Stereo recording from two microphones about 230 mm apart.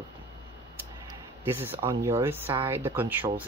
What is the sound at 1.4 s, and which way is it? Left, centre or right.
Speech, centre.